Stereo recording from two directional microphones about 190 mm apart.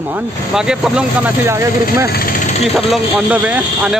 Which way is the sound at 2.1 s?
50° left (ahead or behind).